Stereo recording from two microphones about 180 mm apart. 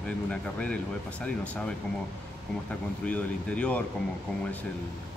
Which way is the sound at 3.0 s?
5° left (ahead or behind).